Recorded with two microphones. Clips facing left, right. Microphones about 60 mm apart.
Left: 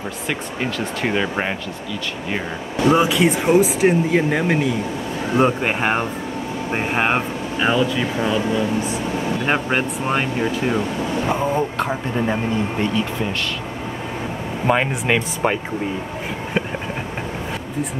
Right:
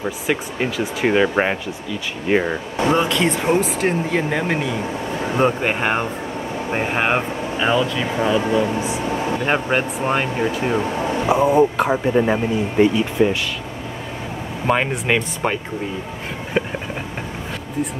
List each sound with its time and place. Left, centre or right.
0.3 s speech: centre
2.9 s speech: centre
8.2 s speech: centre
14.7 s speech: centre